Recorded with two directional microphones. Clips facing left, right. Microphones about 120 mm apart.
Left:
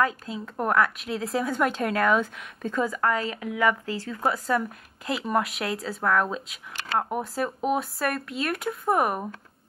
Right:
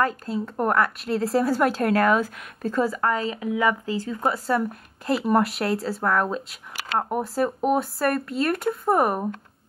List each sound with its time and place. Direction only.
0.0 s speech: centre (ahead or behind)
3.8 s speech: 25° right (ahead or behind)
4.5 s speech: centre (ahead or behind)